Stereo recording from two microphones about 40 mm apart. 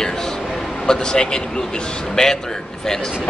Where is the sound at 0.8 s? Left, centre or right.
Centre.